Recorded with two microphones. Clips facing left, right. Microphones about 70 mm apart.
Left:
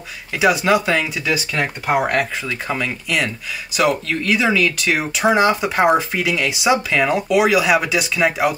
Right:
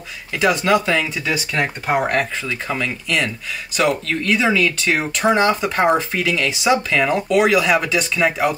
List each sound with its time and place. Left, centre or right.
0.3 s speech: centre